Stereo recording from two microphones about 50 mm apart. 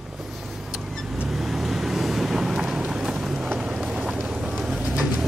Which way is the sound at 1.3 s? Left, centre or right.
Centre.